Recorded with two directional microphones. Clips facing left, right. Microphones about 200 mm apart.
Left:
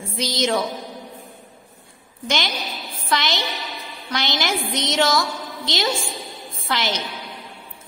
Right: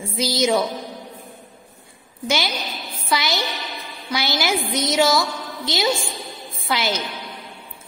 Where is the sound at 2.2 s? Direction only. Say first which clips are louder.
Right 2 dB; 5° right (ahead or behind).